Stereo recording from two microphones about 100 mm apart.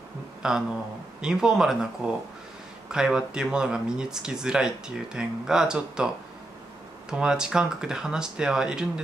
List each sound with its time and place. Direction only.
0.4 s speech: 5° right (ahead or behind)
7.1 s speech: 5° right (ahead or behind)